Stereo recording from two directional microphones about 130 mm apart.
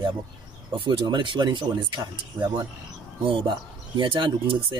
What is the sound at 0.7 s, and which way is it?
Speech, 40° right (ahead or behind).